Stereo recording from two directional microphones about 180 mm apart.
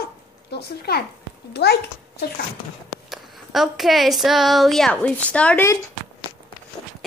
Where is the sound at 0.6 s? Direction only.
60° left (ahead or behind).